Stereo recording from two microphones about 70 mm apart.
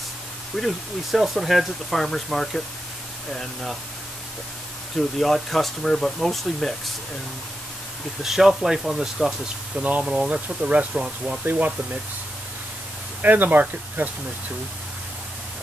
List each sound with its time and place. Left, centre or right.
0.6 s speech: centre
4.9 s speech: centre
8.2 s speech: centre
9.8 s speech: right
11.4 s speech: right
13.2 s speech: right